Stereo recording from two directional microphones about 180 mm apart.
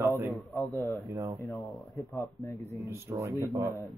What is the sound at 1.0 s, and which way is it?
Speech, 15° right (ahead or behind).